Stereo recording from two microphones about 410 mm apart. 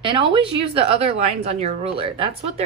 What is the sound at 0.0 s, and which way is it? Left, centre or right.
A woman's voice, centre.